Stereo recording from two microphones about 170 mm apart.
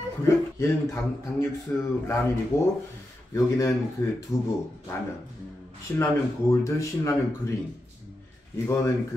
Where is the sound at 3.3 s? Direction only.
20° left (ahead or behind).